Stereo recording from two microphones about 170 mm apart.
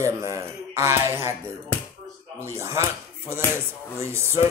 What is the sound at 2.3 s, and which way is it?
Speech, 15° right (ahead or behind).